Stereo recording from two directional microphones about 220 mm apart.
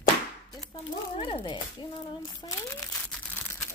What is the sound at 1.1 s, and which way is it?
Speech, 25° left (ahead or behind).